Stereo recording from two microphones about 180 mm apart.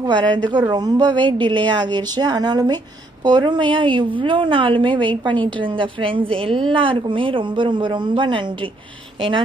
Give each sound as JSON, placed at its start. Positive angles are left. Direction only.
{"t": 0.0, "sound": "a woman's voice", "side_deg": -25}